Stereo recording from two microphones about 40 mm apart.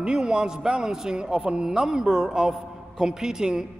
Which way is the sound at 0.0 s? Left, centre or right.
Right.